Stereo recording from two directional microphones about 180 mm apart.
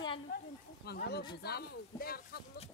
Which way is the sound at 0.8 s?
65° left (ahead or behind).